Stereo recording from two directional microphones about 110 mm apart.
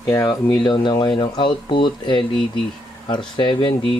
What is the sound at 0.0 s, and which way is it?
Speech, 35° left (ahead or behind).